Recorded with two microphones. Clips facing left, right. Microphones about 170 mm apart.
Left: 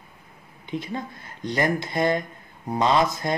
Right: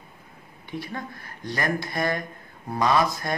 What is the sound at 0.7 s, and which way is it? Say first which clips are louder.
Speech: left 3 dB; 20° left (ahead or behind).